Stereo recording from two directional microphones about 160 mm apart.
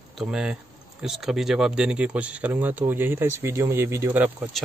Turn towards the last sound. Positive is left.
turn(degrees=-10)  # may be behind; listen again after turning